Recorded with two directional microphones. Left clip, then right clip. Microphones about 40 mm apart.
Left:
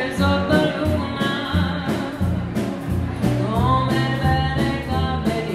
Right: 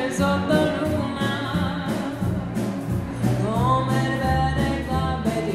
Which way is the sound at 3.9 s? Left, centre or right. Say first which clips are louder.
Left 2 dB; right.